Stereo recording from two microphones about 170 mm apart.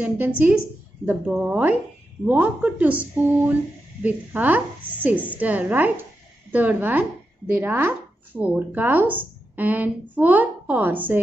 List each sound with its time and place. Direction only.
0.0 s speech: 10° right (ahead or behind)